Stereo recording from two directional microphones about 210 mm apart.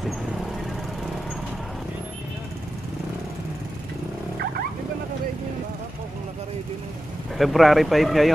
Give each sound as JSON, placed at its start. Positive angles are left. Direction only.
{"t": 7.3, "sound": "speech", "side_deg": 0}